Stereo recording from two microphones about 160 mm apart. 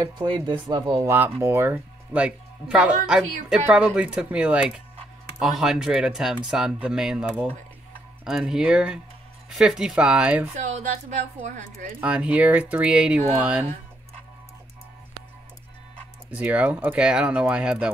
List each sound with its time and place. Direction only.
0.3 s speech: 30° right (ahead or behind)
1.0 s speech: 15° right (ahead or behind)
10.5 s speech: 45° right (ahead or behind)
12.0 s speech: 10° right (ahead or behind)
16.3 s speech: 10° right (ahead or behind)